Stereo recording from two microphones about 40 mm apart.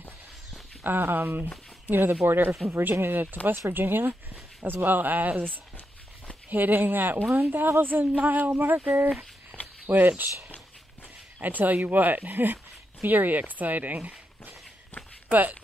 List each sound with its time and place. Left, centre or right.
0.8 s speech: right
6.5 s speech: right
7.6 s speech: right
9.5 s a sound: left
9.8 s speech: right
11.4 s speech: right